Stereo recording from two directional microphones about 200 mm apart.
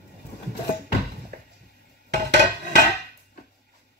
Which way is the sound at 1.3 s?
50° right (ahead or behind).